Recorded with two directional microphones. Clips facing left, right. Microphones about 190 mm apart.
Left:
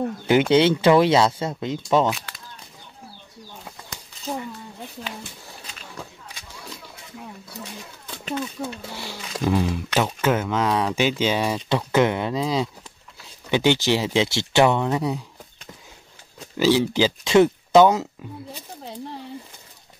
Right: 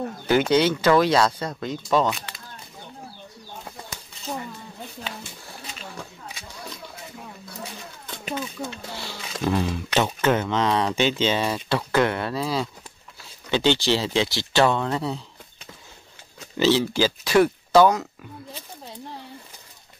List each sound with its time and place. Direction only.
0.3 s speech: 20° left (ahead or behind)
2.0 s speech: centre (ahead or behind)
8.6 s a sound: 15° left (ahead or behind)
10.2 s speech: 5° left (ahead or behind)
16.3 s speech: 10° left (ahead or behind)